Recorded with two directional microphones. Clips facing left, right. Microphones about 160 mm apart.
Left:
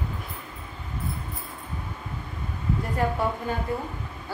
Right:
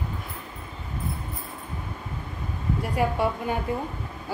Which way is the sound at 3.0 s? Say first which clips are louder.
Right 1 dB; 10° right (ahead or behind).